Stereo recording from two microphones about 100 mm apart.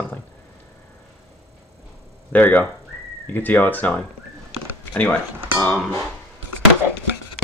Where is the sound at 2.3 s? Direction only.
20° left (ahead or behind).